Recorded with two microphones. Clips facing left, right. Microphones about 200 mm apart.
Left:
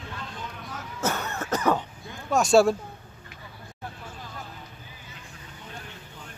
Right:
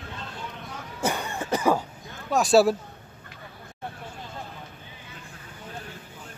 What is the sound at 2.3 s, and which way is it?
Speech, centre (ahead or behind).